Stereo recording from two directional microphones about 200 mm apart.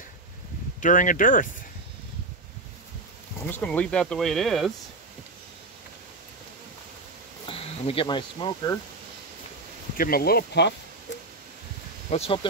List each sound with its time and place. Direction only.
0.7 s speech: 40° left (ahead or behind)
3.4 s speech: 10° left (ahead or behind)
7.4 s speech: 30° left (ahead or behind)
9.9 s speech: 50° left (ahead or behind)
12.1 s speech: 30° left (ahead or behind)